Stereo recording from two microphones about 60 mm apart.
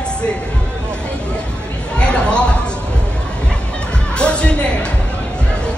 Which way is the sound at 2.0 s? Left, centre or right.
Centre.